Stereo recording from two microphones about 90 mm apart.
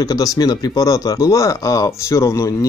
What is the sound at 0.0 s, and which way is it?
Speech, 45° left (ahead or behind).